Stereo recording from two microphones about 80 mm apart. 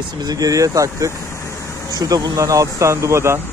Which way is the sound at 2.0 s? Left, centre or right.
Right.